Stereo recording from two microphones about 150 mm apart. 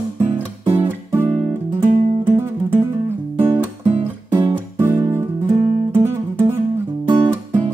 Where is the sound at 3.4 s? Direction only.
15° right (ahead or behind).